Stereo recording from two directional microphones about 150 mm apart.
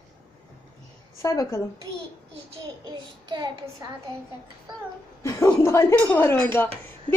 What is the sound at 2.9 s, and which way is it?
Child singing, 30° right (ahead or behind).